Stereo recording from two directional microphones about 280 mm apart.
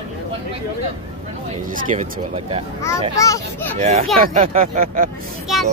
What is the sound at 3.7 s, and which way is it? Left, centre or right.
Speech, right.